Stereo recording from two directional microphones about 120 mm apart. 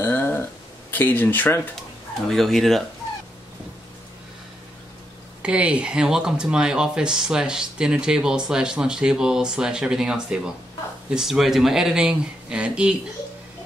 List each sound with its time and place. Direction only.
0.0 s a sound: 15° left (ahead or behind)
0.9 s speech: 15° left (ahead or behind)
2.2 s speech: centre (ahead or behind)
5.4 s speech: 10° right (ahead or behind)